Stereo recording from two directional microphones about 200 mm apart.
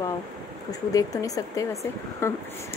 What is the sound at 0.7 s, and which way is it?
Speech, 15° left (ahead or behind).